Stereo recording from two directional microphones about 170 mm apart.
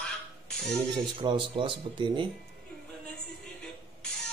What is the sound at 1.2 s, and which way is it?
Speech, 30° right (ahead or behind).